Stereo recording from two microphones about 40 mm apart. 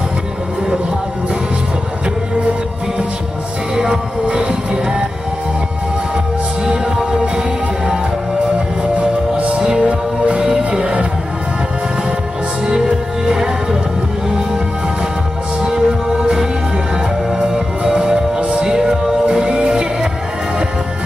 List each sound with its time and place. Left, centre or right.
3.8 s music: right
8.9 s music: right
10.3 s music: centre
12.6 s music: right
15.6 s music: centre
17.8 s music: centre